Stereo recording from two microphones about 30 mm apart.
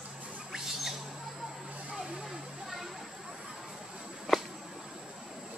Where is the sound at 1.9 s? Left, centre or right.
Right.